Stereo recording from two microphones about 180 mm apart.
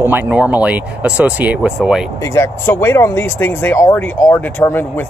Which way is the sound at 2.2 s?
15° left (ahead or behind).